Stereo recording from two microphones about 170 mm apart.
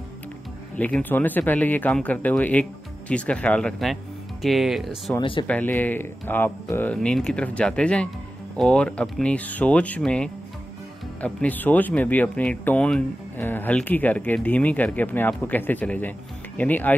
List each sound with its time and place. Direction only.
0.7 s speech: 10° left (ahead or behind)
5.2 s speech: 30° left (ahead or behind)
5.5 s speech: 10° left (ahead or behind)